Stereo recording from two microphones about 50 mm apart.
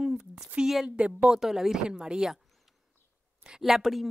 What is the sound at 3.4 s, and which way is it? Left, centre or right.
Speech, centre.